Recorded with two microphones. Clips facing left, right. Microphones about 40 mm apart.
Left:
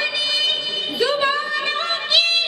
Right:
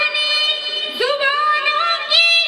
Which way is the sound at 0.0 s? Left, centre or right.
Centre.